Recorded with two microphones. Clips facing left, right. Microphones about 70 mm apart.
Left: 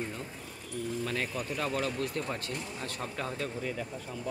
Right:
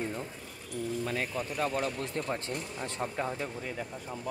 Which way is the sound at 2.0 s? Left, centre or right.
Right.